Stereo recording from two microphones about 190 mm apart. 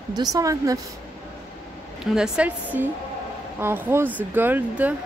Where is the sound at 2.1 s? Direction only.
5° right (ahead or behind).